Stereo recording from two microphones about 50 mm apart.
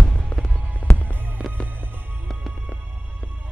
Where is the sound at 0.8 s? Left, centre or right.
Left.